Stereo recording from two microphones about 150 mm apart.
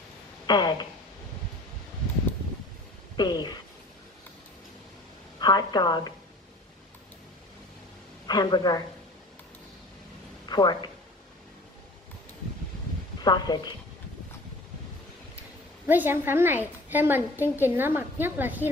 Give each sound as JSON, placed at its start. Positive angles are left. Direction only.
{"t": 0.5, "sound": "a woman's voice", "side_deg": 30}
{"t": 3.2, "sound": "a woman's voice", "side_deg": 30}
{"t": 5.4, "sound": "a woman's voice", "side_deg": 30}
{"t": 8.3, "sound": "a woman's voice", "side_deg": 30}
{"t": 10.5, "sound": "speech", "side_deg": 30}
{"t": 13.2, "sound": "a woman's voice", "side_deg": 30}
{"t": 15.9, "sound": "a woman's voice", "side_deg": -15}